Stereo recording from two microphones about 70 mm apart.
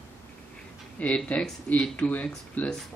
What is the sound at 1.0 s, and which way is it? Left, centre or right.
Speech, centre.